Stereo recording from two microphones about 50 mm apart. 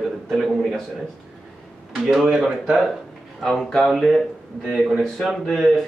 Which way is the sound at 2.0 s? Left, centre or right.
Centre.